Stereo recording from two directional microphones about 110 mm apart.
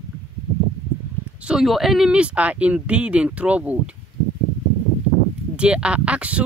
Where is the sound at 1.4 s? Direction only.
Centre (ahead or behind).